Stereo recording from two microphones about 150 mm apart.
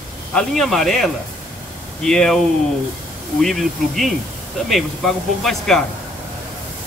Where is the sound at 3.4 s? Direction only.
Centre (ahead or behind).